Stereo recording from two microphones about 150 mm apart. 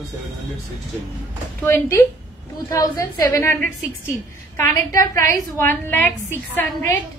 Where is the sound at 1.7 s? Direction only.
20° left (ahead or behind).